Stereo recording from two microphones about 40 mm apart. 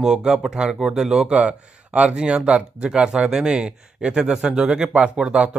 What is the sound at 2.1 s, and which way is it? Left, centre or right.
Speech, centre.